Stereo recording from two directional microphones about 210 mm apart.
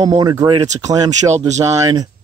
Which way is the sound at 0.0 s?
20° right (ahead or behind).